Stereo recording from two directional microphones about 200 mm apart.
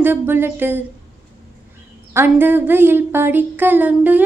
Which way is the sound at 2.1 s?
10° right (ahead or behind).